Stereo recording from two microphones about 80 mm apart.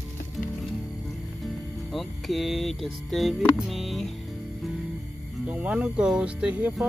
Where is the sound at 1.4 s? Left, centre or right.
Centre.